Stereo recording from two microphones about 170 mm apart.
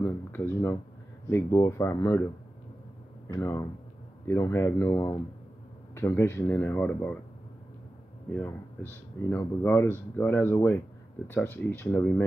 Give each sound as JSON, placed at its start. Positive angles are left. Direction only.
{"t": 0.0, "sound": "speech", "side_deg": 15}
{"t": 3.3, "sound": "speech", "side_deg": 15}
{"t": 9.3, "sound": "speech", "side_deg": 15}